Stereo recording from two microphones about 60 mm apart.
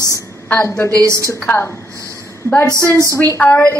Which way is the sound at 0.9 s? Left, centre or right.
Right.